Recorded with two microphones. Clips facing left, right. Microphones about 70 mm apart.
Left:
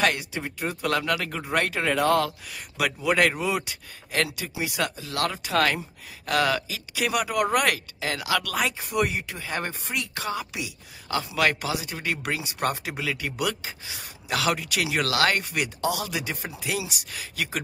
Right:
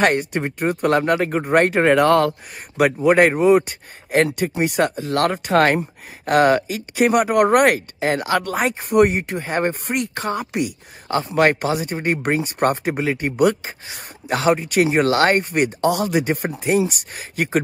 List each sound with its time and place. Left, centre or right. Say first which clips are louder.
0.0 s speech: right 7 dB; right